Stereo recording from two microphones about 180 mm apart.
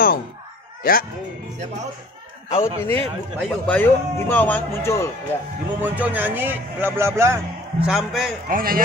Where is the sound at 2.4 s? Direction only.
15° left (ahead or behind).